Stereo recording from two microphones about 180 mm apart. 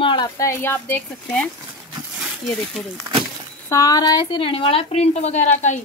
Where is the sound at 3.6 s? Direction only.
20° left (ahead or behind); by 5.8 s 45° left (ahead or behind).